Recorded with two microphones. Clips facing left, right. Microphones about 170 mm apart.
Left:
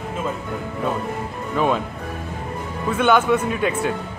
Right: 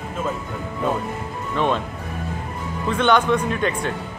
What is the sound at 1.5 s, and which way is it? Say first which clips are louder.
Speech: left 1 dB; 5° left (ahead or behind).